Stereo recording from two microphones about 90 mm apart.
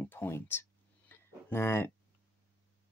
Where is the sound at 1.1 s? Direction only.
25° left (ahead or behind).